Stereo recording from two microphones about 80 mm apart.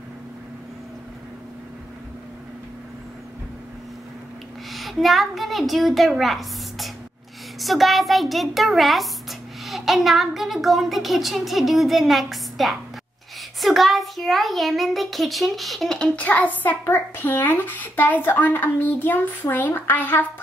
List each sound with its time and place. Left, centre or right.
4.7 s a child's voice: centre
16.2 s a child's voice: centre